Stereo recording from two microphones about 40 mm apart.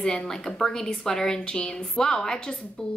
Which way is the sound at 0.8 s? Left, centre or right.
Centre.